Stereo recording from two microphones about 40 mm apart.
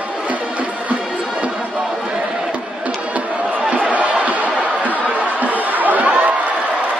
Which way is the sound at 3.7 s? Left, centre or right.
Right.